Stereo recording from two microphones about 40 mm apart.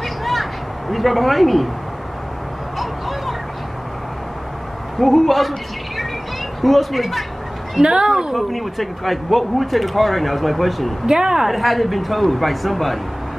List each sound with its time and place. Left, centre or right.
0.2 s cat: centre
2.8 s vehicle: centre
4.9 s a woman's voice: centre
7.8 s a woman's voice: centre
8.4 s speech: centre
11.1 s a woman's voice: centre
11.4 s speech: centre